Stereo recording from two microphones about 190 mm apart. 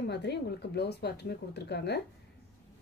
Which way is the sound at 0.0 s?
60° left (ahead or behind).